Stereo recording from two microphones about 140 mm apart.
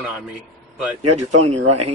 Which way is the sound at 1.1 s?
50° right (ahead or behind).